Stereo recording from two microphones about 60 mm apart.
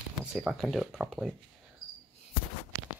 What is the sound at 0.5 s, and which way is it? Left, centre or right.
Speech, centre.